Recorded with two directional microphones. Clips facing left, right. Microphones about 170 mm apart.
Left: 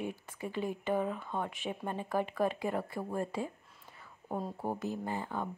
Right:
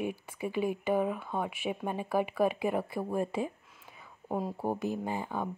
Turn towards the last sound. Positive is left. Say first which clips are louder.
# right 2 dB
turn(degrees=-15)  # may be behind; listen again after turning